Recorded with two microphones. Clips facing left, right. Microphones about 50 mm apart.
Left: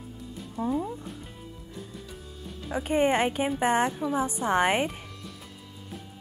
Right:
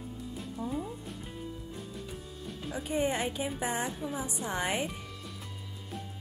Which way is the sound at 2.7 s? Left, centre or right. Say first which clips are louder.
Left 7 dB; left.